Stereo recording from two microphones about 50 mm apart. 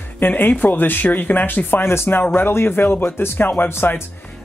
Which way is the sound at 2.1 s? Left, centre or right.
Left.